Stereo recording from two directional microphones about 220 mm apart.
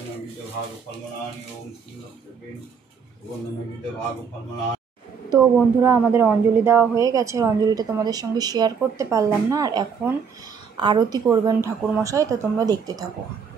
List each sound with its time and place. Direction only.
5.3 s speech: 10° right (ahead or behind)